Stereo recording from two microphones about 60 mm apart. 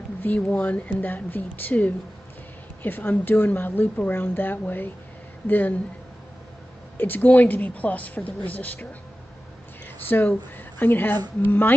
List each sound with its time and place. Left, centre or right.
0.2 s a woman's voice: left
7.0 s a woman's voice: left
10.0 s a woman's voice: left